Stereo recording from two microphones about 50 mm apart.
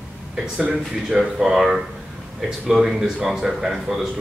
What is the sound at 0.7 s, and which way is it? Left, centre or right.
A man's voice, centre.